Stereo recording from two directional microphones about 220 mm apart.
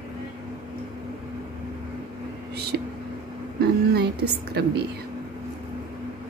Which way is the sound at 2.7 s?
50° right (ahead or behind).